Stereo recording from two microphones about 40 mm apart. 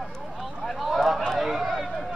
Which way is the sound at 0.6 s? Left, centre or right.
Centre.